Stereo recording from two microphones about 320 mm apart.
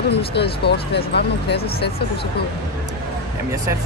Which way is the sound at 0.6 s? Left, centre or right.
Left.